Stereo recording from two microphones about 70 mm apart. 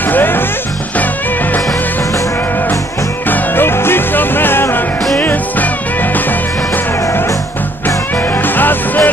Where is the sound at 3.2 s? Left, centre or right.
Left.